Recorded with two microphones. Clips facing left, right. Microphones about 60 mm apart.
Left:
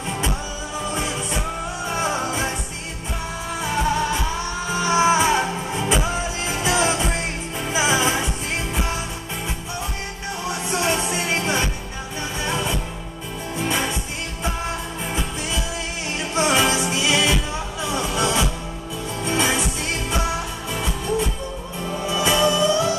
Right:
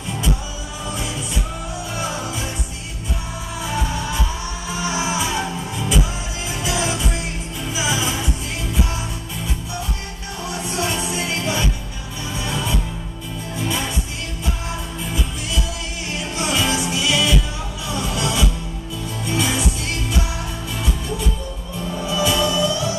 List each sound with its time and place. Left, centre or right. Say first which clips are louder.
0.9 s music: left 1 dB; left
4.8 s music: left 6 dB; left
10.6 s music: left 1 dB; left
16.3 s music: left 3 dB; left
22.0 s music: left 1 dB; left